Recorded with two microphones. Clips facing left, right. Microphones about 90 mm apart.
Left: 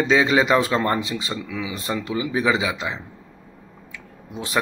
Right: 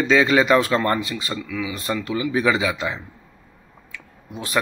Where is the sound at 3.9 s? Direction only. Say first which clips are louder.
Left 1 dB; 20° left (ahead or behind).